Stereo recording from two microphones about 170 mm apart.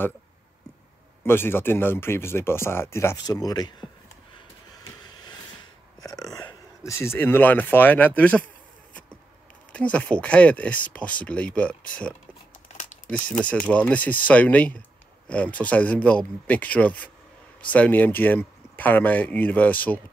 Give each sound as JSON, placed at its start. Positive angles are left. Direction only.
{"t": 1.2, "sound": "speech", "side_deg": 15}
{"t": 5.9, "sound": "speech", "side_deg": 20}
{"t": 9.7, "sound": "speech", "side_deg": 5}
{"t": 12.7, "sound": "a sound", "side_deg": 50}
{"t": 13.4, "sound": "speech", "side_deg": 5}